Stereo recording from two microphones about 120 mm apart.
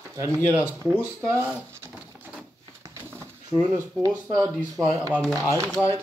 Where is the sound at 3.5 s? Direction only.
35° right (ahead or behind).